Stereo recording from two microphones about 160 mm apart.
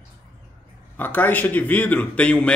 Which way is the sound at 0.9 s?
10° left (ahead or behind).